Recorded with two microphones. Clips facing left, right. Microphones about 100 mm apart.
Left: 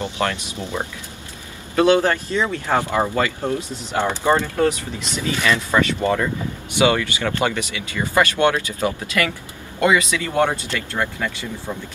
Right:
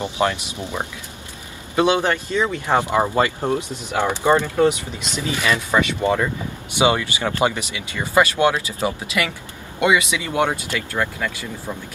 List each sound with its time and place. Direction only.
0.0 s speech: 20° right (ahead or behind)
11.0 s speech: 10° left (ahead or behind)